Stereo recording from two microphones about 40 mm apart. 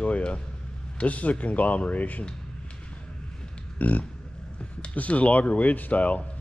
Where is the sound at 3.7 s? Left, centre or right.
Left.